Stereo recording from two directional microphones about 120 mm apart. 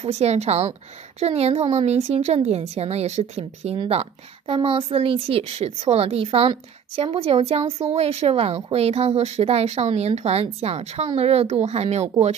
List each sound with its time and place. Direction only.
0.0 s a woman's voice: 65° right (ahead or behind)